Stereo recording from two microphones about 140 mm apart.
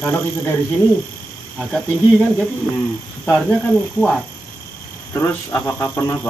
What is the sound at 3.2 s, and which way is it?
Speech, 10° left (ahead or behind).